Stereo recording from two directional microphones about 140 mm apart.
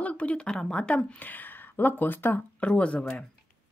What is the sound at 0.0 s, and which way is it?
A woman's voice, 10° left (ahead or behind).